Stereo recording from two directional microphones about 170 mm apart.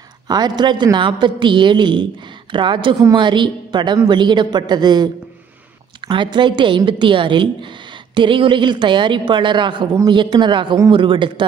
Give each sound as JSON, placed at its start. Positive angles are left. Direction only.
{"t": 0.3, "sound": "a woman's voice", "side_deg": -25}